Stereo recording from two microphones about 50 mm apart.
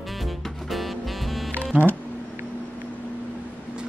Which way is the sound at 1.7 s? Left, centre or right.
Right.